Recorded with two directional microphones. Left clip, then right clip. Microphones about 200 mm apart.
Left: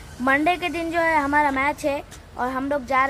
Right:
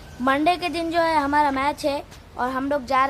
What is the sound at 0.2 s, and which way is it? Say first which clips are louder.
A woman's voice: even; 5° right (ahead or behind).